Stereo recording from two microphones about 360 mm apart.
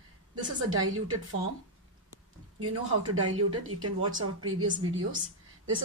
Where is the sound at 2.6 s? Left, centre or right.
Right.